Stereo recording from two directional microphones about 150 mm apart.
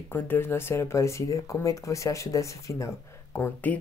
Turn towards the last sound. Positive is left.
turn(degrees=15)  # may be behind; listen again after turning